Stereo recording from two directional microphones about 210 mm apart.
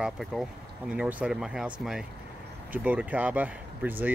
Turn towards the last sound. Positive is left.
turn(degrees=-10)  # may be behind; listen again after turning